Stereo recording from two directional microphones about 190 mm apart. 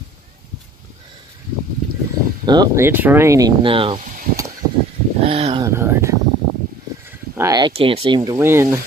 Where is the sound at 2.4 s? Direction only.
20° right (ahead or behind).